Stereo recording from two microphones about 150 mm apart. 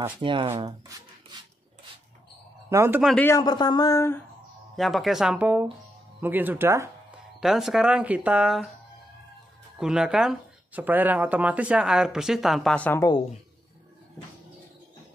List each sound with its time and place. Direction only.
0.2 s speech: 35° right (ahead or behind)
1.3 s filing: 30° right (ahead or behind)
2.7 s speech: 15° right (ahead or behind)
3.2 s speech: 15° left (ahead or behind)
3.4 s speech: 30° left (ahead or behind)
4.7 s speech: centre (ahead or behind); by 6.9 s 15° right (ahead or behind)
7.1 s speech: 5° right (ahead or behind)
9.8 s speech: 5° right (ahead or behind)